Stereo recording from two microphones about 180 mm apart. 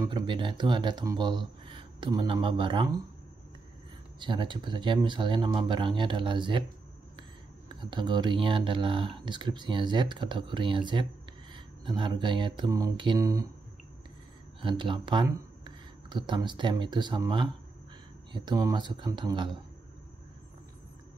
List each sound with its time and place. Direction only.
0.0 s speech: 25° right (ahead or behind)
4.2 s speech: 25° right (ahead or behind)
14.6 s speech: 30° right (ahead or behind)